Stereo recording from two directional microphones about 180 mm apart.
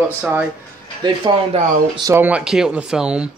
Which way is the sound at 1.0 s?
30° right (ahead or behind).